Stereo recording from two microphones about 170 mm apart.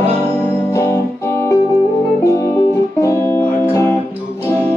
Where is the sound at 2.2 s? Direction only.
20° left (ahead or behind).